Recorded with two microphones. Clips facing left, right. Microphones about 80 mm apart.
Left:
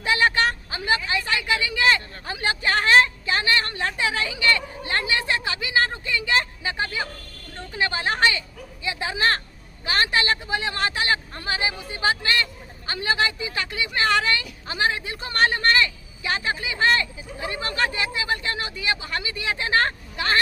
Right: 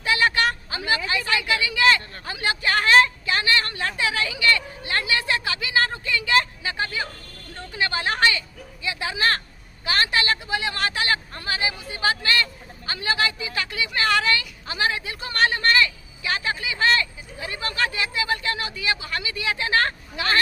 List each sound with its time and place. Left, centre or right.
0.0 s a woman's voice: left